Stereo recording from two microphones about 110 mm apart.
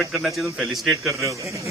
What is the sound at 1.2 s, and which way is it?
Speech, 30° right (ahead or behind).